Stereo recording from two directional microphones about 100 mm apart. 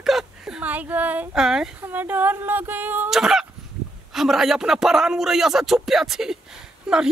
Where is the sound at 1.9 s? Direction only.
20° right (ahead or behind).